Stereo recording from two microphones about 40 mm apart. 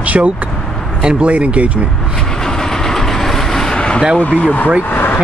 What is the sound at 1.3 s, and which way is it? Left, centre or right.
Speech, right.